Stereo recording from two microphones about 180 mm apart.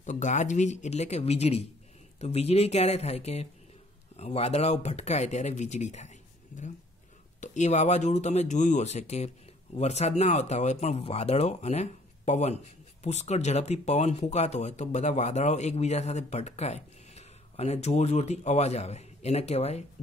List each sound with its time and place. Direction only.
0.0 s speech: 40° left (ahead or behind)